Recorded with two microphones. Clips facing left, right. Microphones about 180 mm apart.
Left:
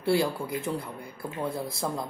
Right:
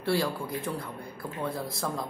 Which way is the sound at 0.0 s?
25° left (ahead or behind).